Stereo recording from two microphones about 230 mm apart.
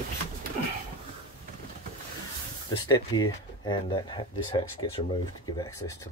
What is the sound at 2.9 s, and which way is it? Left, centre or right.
Speech, centre.